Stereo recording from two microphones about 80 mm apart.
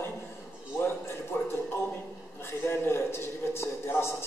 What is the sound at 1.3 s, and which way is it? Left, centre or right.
Speech, left.